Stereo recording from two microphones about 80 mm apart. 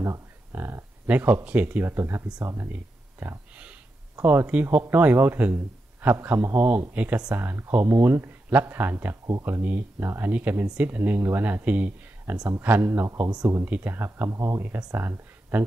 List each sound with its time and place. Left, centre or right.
0.0 s a sound: right
1.0 s speech: right
1.9 s speech: right
2.7 s a sound: right
4.2 s a man's voice: right
7.3 s speech: right
12.4 s speech: right
13.3 s speech: right
13.7 s speech: right